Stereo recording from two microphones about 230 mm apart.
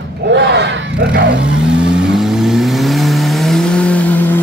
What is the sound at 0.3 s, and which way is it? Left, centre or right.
Battle cry, right.